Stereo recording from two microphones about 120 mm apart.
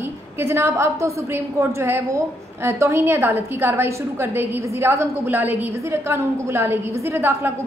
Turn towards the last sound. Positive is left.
turn(degrees=-20)  # may be behind; listen again after turning